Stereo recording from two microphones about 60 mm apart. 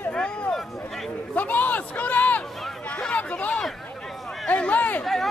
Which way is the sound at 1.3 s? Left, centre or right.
Left.